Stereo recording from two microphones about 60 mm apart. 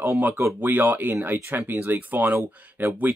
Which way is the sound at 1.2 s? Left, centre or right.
Right.